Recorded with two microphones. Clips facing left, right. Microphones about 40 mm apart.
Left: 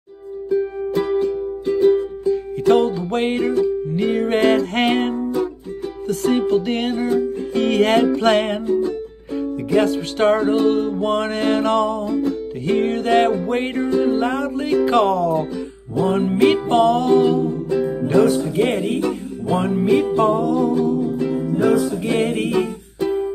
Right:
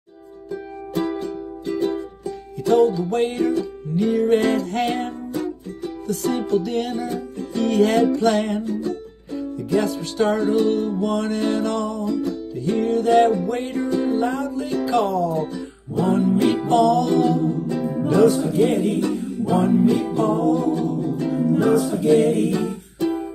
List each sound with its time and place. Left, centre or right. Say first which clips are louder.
0.9 s music: left 5 dB; left
2.6 s music: even; left
9.7 s music: left 4 dB; left
18.9 s music: even; left